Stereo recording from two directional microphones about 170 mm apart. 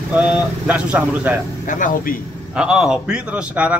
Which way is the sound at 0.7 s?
10° right (ahead or behind).